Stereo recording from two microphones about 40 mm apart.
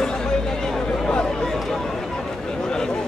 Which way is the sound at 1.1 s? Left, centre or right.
Left.